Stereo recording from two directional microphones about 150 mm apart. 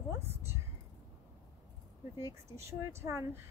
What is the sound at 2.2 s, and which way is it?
Speech, 20° right (ahead or behind).